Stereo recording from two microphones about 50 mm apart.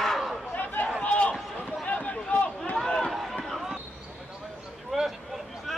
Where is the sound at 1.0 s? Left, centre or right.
Left.